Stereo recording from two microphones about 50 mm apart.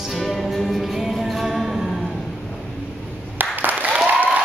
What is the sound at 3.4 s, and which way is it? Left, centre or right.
Applause, right.